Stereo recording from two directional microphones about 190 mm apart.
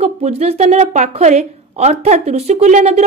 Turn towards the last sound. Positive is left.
turn(degrees=-35)  # may be behind; listen again after turning